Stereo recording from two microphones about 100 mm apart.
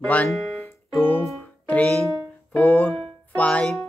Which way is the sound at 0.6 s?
20° left (ahead or behind).